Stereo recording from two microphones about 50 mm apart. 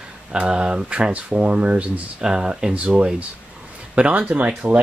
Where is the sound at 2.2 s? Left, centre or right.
Centre.